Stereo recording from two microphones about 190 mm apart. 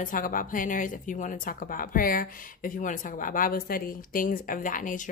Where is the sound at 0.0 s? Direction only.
45° left (ahead or behind).